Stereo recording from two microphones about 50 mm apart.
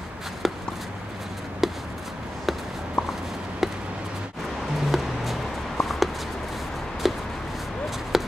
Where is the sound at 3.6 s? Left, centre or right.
Centre.